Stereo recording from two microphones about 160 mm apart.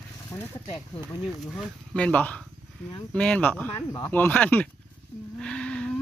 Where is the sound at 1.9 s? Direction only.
10° left (ahead or behind).